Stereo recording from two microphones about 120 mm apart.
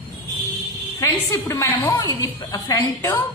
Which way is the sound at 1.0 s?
25° left (ahead or behind).